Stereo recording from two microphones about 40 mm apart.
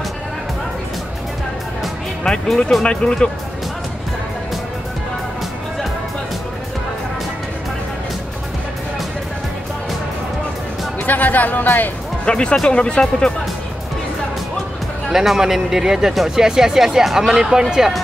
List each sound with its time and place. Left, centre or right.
2.3 s speech: centre
2.8 s speech: left
11.1 s speech: left
12.3 s speech: left
15.0 s speech: centre